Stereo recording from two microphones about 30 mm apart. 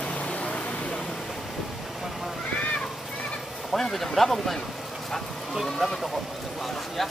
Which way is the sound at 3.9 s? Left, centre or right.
Centre.